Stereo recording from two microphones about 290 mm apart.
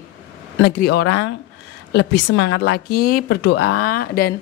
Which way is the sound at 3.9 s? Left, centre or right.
Left.